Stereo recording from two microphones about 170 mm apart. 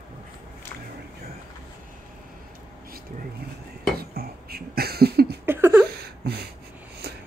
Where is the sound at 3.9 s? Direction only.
65° right (ahead or behind).